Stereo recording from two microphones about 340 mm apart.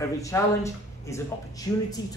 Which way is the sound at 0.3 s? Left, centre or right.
Centre.